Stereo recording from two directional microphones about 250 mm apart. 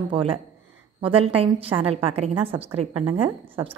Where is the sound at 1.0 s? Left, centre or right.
Right.